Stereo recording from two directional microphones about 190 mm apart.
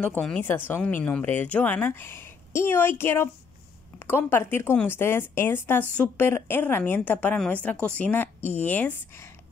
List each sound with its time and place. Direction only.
0.0 s speech: 5° left (ahead or behind)